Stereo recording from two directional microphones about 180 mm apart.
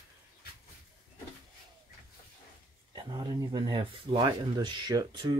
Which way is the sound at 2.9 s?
25° right (ahead or behind).